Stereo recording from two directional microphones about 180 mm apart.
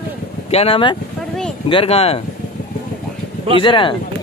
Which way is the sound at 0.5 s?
35° left (ahead or behind).